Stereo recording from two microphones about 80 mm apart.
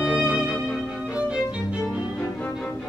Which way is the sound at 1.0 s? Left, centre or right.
Centre.